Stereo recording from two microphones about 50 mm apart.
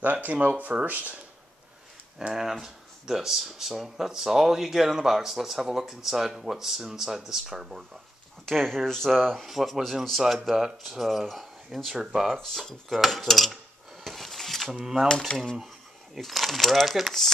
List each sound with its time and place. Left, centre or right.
0.0 s speech: right
2.1 s speech: centre
8.5 s speech: centre
12.4 s speech: centre
14.0 s a sound: centre
14.7 s speech: centre
15.0 s speech: centre